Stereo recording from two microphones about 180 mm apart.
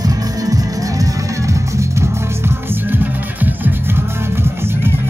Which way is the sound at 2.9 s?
10° right (ahead or behind).